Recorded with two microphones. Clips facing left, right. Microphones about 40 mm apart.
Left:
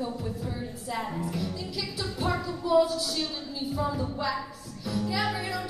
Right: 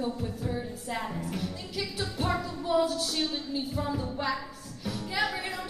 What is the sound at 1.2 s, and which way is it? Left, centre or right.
Music, right.